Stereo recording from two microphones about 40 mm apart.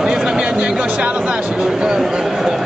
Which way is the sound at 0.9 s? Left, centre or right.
Right.